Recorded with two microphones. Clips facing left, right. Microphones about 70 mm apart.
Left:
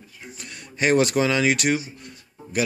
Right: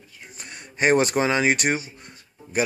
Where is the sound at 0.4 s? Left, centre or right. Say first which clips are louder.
Right 1 dB; right.